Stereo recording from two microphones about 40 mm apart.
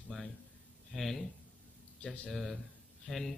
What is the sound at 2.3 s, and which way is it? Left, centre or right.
Speech, centre.